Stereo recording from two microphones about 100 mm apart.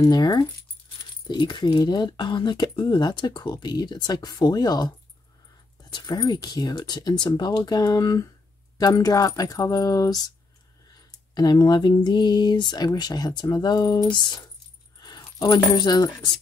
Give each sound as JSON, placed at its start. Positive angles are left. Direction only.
{"t": 0.0, "sound": "speech", "side_deg": 40}